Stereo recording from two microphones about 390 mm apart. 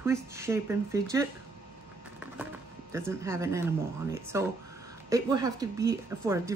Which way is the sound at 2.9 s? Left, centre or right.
Centre.